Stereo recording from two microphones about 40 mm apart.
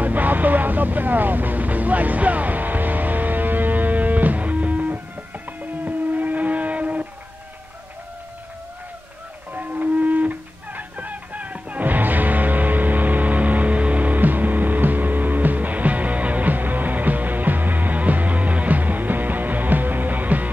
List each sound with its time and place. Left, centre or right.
0.0 s music: right
5.9 s vehicle: right
9.5 s music: right